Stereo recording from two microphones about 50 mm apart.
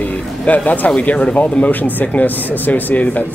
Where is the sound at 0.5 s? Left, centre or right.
Left.